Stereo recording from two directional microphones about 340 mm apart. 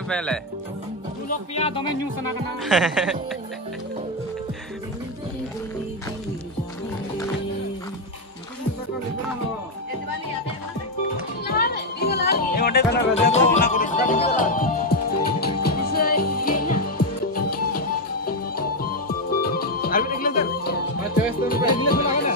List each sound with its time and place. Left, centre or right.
0.1 s speech: centre
1.5 s speech: centre
2.6 s speech: centre
11.4 s music: left
16.3 s music: left
16.6 s music: left
18.2 s music: left
21.6 s music: left